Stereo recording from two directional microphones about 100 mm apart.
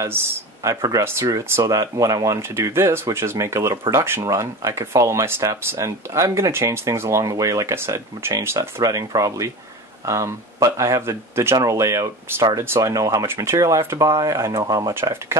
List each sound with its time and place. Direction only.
0.7 s speech: 35° right (ahead or behind)
15.0 s speech: 25° right (ahead or behind)